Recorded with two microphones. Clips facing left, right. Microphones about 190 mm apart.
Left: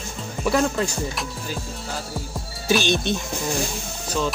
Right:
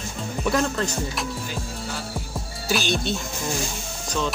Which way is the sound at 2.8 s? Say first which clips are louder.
Left 3 dB; 20° left (ahead or behind).